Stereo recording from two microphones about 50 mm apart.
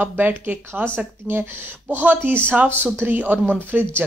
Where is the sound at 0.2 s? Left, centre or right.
Right.